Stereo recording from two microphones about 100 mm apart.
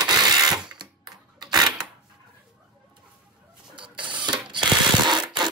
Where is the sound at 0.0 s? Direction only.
40° right (ahead or behind).